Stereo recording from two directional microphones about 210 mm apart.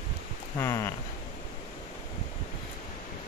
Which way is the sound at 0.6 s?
15° left (ahead or behind).